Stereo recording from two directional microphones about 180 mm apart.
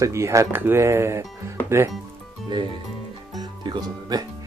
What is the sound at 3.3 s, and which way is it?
Music, 25° right (ahead or behind).